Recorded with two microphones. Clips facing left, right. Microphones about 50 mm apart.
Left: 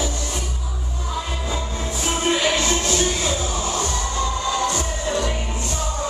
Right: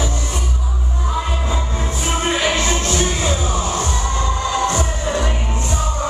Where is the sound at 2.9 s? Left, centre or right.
Right.